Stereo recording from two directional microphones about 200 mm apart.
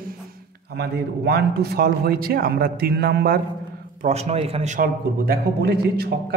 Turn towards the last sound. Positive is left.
turn(degrees=-50)  # may be behind; listen again after turning